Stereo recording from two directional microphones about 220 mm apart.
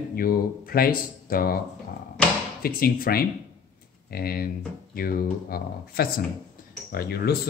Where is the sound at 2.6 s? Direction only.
45° left (ahead or behind).